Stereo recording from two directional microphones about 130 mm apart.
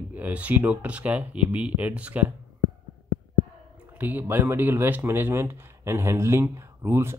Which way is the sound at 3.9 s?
15° right (ahead or behind).